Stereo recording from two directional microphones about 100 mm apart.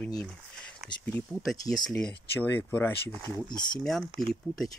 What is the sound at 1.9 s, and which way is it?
Speech, 10° left (ahead or behind).